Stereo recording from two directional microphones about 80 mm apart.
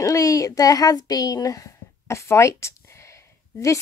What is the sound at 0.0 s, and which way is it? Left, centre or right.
A child's voice, left.